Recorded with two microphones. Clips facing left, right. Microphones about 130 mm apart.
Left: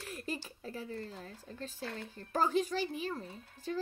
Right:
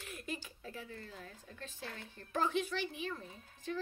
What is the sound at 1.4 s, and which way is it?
A child's voice, 35° left (ahead or behind).